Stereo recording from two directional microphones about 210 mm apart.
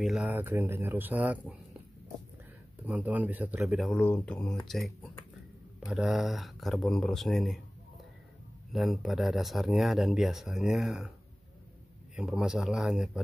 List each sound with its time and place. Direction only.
0.0 s speech: 5° right (ahead or behind)
2.8 s speech: 5° right (ahead or behind)
8.7 s speech: centre (ahead or behind)
12.2 s speech: centre (ahead or behind)